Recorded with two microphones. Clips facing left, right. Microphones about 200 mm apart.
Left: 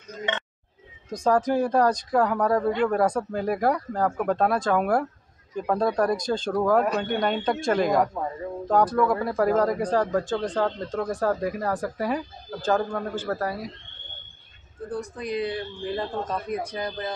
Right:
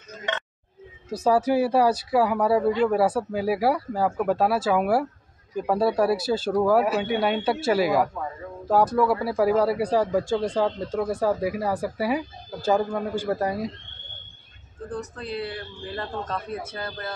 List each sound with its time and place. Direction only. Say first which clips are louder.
1.1 s speech: right 1 dB; 5° right (ahead or behind)
14.9 s a man's voice: left 2 dB; 15° left (ahead or behind)